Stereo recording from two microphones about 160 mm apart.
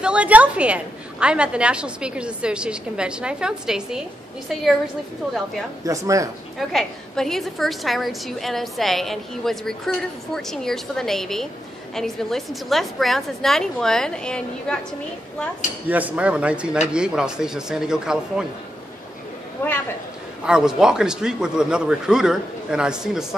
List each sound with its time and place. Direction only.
0.0 s a woman's voice: 5° right (ahead or behind)
5.9 s speech: 20° right (ahead or behind)
6.7 s a woman's voice: centre (ahead or behind)
15.9 s a woman's voice: 10° right (ahead or behind)
19.6 s a man's voice: 15° left (ahead or behind)
20.4 s a woman's voice: 5° right (ahead or behind)